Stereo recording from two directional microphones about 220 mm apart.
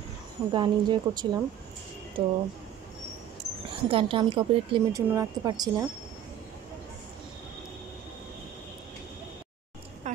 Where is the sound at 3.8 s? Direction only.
25° right (ahead or behind).